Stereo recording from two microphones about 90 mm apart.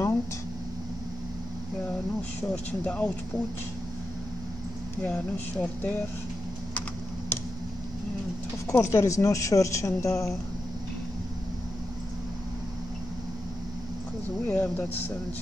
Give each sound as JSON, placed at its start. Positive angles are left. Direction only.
{"t": 2.5, "sound": "speech", "side_deg": 15}
{"t": 5.0, "sound": "speech", "side_deg": 15}
{"t": 8.6, "sound": "a woman's voice", "side_deg": 30}
{"t": 14.4, "sound": "speech", "side_deg": 20}